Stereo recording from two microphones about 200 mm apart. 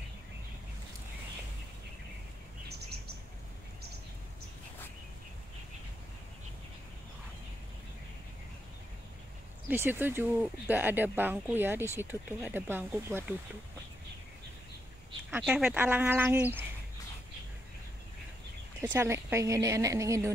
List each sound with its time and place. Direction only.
9.7 s speech: 10° right (ahead or behind)
15.3 s speech: 5° right (ahead or behind)
18.9 s speech: 15° right (ahead or behind)